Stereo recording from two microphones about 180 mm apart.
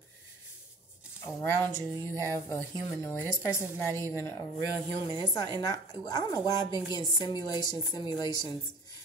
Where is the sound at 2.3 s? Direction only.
15° left (ahead or behind).